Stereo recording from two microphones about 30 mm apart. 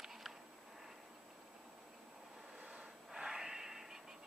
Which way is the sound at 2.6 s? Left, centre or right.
Right.